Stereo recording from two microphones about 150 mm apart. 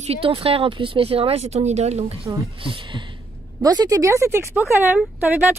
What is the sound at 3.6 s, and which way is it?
Speech, 25° right (ahead or behind).